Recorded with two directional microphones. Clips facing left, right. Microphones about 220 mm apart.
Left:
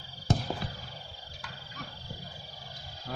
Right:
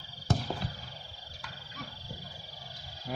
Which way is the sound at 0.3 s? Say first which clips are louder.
Left 2 dB; 15° left (ahead or behind).